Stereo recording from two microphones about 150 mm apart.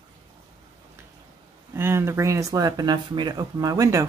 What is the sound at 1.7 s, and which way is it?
Speech, 15° right (ahead or behind).